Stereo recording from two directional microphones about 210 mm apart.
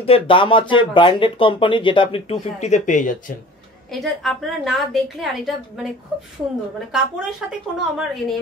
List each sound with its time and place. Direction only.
0.0 s speech: 25° left (ahead or behind)
3.9 s a woman's voice: centre (ahead or behind)
6.9 s a woman's voice: 5° right (ahead or behind)